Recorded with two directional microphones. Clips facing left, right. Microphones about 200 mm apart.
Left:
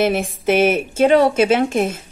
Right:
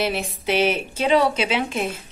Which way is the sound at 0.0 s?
50° left (ahead or behind).